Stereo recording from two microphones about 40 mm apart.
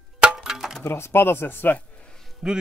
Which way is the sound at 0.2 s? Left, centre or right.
Right.